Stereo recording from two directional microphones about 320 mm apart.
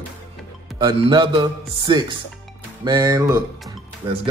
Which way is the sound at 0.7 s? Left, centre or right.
Centre.